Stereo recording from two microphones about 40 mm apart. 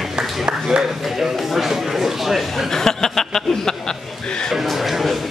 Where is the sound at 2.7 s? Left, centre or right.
Centre.